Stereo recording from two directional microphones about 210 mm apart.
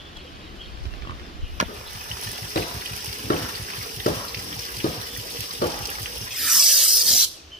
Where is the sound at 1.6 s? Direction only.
35° right (ahead or behind).